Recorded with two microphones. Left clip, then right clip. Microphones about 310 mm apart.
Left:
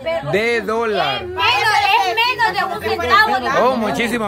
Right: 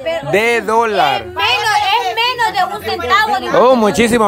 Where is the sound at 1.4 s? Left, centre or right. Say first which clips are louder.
Right 1 dB; right.